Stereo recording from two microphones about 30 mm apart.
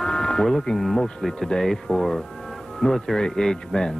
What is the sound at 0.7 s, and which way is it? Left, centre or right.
Speech, centre.